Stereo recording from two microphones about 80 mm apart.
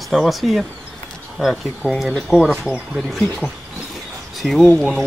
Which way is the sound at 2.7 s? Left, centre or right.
Centre.